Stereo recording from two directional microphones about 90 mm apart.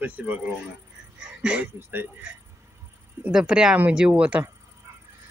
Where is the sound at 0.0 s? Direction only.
15° right (ahead or behind).